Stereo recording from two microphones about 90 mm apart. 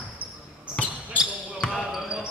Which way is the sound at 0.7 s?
15° left (ahead or behind).